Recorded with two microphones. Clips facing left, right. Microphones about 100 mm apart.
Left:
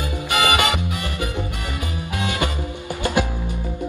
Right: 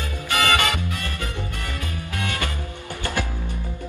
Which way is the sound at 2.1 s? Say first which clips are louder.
Left 5 dB; 20° left (ahead or behind).